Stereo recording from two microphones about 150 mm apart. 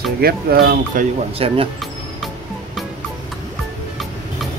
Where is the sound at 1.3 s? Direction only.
40° right (ahead or behind).